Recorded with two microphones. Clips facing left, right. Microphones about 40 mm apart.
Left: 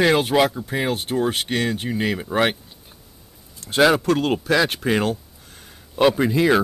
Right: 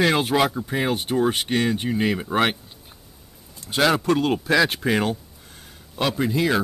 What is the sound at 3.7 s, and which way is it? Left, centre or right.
Speech, centre.